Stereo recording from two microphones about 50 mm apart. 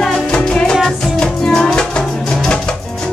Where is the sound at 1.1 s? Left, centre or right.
Centre.